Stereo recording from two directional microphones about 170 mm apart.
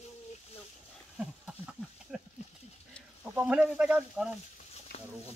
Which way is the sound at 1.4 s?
5° right (ahead or behind).